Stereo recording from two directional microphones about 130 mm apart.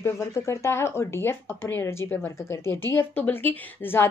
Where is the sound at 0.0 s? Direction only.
20° left (ahead or behind).